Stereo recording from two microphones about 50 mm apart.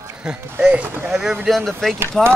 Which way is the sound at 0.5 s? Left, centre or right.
Right.